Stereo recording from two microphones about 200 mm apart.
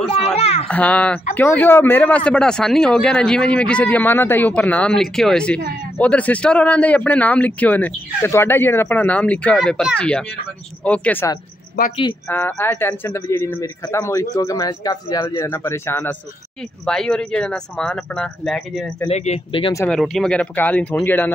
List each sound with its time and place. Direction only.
0.3 s speech: 30° left (ahead or behind)
0.7 s a man's voice: 5° left (ahead or behind)
12.0 s speech: 20° left (ahead or behind)
12.4 s a man's voice: 10° left (ahead or behind)
19.0 s speech: 35° left (ahead or behind)
19.9 s a man's voice: centre (ahead or behind)